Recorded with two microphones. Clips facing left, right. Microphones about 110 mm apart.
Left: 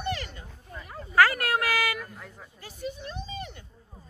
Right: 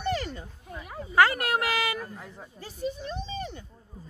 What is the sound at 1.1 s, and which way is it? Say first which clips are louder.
Speech: even; 25° right (ahead or behind).